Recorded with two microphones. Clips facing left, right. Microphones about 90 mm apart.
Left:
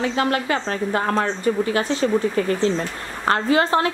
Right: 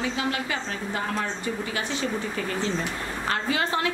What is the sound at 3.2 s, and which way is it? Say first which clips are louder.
Speech: left 9 dB; 40° left (ahead or behind).